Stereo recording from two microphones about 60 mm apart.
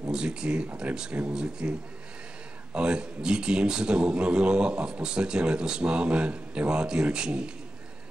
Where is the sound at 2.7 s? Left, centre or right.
Centre.